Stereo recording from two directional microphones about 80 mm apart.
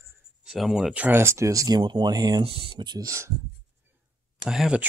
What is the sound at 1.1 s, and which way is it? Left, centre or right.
Speech, right.